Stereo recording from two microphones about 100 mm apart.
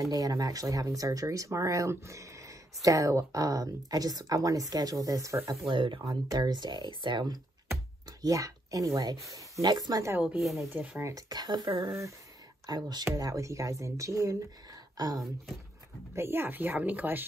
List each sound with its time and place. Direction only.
0.0 s speech: 35° right (ahead or behind)
5.7 s speech: 55° right (ahead or behind)
6.0 s speech: 40° right (ahead or behind)
8.2 s speech: 35° right (ahead or behind)
9.6 s speech: 45° right (ahead or behind)
10.4 s speech: centre (ahead or behind)
10.7 s speech: 10° right (ahead or behind)
11.0 s speech: 35° right (ahead or behind)
11.8 s speech: 30° right (ahead or behind)
12.6 s speech: 40° right (ahead or behind)
16.2 s speech: 20° right (ahead or behind)